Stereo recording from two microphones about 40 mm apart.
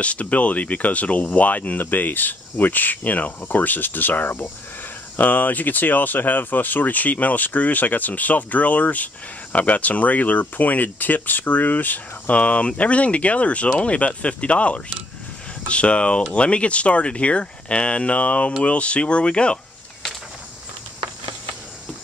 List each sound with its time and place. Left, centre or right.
0.0 s speech: left
12.4 s speech: left